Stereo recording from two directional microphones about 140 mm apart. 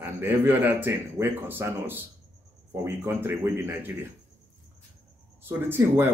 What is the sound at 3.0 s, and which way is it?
Speech, 15° right (ahead or behind).